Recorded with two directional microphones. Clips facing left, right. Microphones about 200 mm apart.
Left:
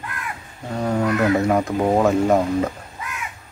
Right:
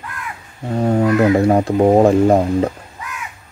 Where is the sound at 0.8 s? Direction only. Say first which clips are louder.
Right 5 dB; 30° right (ahead or behind).